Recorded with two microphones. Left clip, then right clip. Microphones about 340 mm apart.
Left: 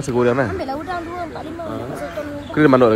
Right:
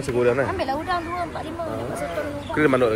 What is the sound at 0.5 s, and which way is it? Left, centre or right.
Speech, right.